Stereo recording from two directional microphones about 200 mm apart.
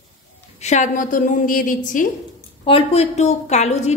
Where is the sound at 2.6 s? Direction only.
30° left (ahead or behind).